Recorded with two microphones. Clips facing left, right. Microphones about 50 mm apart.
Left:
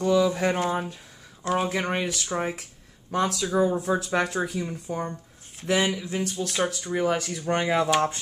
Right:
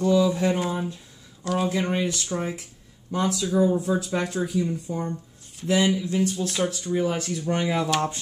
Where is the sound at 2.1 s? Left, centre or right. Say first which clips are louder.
Even; centre.